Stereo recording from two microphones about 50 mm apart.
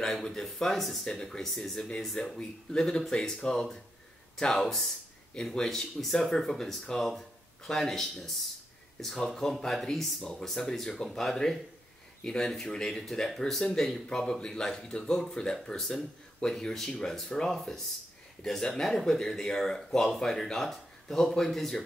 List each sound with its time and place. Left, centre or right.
0.0 s speech: centre
2.3 s speech: centre